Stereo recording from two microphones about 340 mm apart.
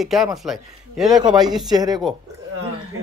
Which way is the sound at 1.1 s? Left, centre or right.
Centre.